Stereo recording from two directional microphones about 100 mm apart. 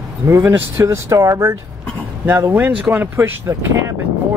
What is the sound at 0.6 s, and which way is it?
Speech, 25° right (ahead or behind).